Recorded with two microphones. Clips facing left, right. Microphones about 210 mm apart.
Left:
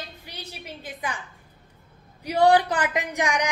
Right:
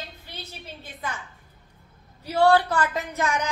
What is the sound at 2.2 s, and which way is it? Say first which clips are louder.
A woman's voice: left 1 dB; 15° left (ahead or behind).